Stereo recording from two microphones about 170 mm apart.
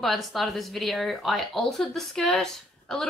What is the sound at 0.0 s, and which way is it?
A woman's voice, centre (ahead or behind).